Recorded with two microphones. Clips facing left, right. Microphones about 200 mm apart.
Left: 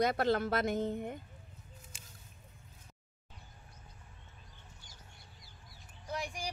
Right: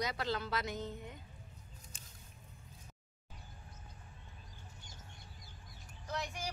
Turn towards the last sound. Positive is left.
turn(degrees=10)  # may be behind; listen again after turning